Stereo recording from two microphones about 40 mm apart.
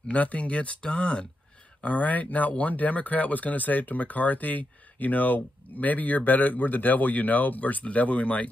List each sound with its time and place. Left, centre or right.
0.1 s speech: left
1.8 s speech: left